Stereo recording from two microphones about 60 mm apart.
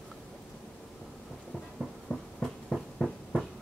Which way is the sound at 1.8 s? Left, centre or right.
Centre.